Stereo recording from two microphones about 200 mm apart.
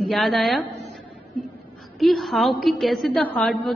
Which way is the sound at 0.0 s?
Centre (ahead or behind).